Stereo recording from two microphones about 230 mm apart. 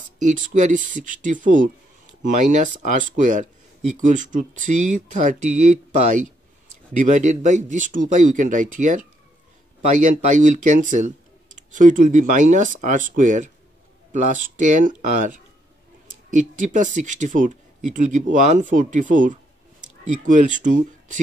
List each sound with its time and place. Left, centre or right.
0.3 s speech: right
7.0 s speech: right